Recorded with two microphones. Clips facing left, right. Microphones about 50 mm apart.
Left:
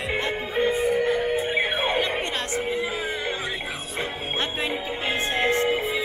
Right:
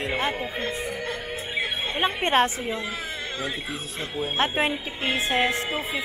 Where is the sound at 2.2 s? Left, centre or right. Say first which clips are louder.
Right 8 dB; right.